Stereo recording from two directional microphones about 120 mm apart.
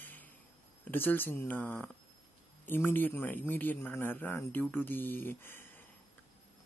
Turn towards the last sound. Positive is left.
turn(degrees=15)  # may be behind; listen again after turning